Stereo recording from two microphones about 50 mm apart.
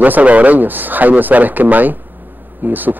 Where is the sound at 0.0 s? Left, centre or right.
Right.